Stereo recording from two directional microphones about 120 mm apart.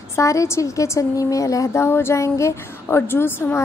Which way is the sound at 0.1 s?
25° left (ahead or behind).